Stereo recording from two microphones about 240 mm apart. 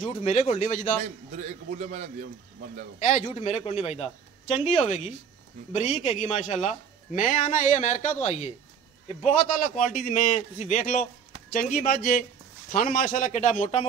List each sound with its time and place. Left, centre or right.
0.0 s a man's voice: left
1.0 s a man's voice: right
3.0 s a man's voice: left